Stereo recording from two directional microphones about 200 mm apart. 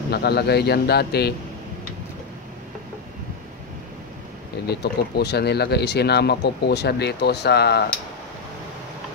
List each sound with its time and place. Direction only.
0.1 s speech: 55° left (ahead or behind)
4.6 s speech: 55° left (ahead or behind)